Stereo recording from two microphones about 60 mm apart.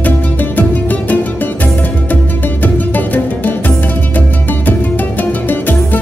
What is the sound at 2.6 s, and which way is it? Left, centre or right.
Music, left.